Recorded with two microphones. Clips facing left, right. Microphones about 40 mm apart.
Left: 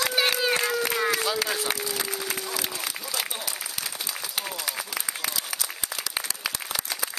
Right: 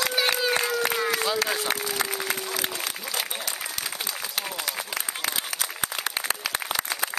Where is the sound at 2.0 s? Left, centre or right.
Right.